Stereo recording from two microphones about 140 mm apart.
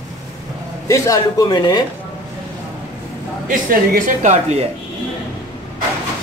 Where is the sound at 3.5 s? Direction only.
75° right (ahead or behind).